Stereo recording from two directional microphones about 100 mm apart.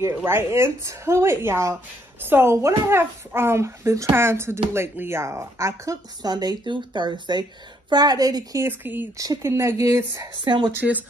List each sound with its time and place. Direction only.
0.0 s speech: 25° right (ahead or behind); by 8.5 s 40° right (ahead or behind)
8.5 s speech: 20° right (ahead or behind)
9.2 s speech: 30° right (ahead or behind)
10.4 s speech: 55° right (ahead or behind)
10.7 s speech: 20° right (ahead or behind)